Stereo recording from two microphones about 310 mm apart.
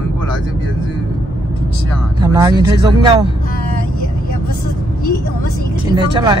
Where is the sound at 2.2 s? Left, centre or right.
Centre.